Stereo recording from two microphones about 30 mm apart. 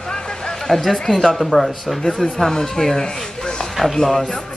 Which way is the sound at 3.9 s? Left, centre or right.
Centre.